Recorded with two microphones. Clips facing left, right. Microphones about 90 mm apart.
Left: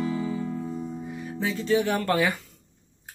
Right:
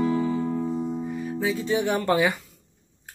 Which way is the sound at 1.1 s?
10° right (ahead or behind).